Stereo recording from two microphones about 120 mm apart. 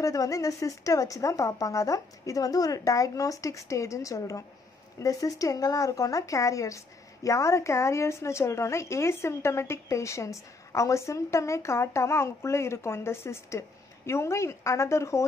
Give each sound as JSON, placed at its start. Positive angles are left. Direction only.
{"t": 0.0, "sound": "a woman's voice", "side_deg": 30}